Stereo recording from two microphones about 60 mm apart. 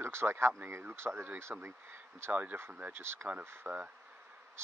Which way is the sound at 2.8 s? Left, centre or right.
Right.